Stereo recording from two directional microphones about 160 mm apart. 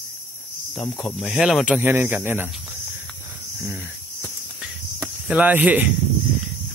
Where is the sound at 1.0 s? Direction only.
Centre (ahead or behind).